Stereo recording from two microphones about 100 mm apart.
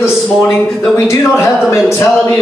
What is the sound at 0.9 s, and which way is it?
Speech, 30° left (ahead or behind).